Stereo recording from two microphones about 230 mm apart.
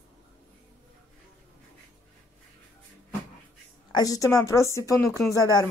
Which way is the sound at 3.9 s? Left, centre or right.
Centre.